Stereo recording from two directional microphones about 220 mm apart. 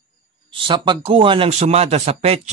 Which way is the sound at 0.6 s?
20° right (ahead or behind).